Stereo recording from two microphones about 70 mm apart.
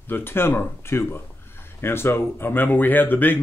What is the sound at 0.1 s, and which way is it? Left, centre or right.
Speech, left.